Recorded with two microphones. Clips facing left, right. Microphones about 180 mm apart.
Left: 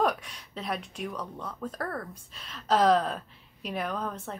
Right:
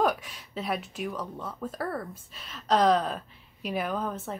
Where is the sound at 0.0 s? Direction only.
5° right (ahead or behind).